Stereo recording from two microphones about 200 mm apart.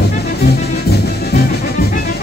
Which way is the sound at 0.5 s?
55° left (ahead or behind).